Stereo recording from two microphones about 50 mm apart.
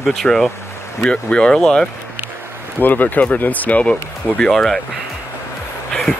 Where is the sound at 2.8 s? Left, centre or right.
Left.